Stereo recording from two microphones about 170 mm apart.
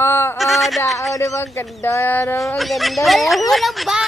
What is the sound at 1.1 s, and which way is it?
Speech, 20° left (ahead or behind).